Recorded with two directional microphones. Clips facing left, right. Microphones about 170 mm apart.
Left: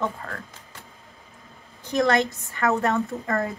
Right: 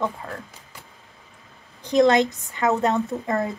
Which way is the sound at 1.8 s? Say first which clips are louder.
Right 4 dB; 20° right (ahead or behind).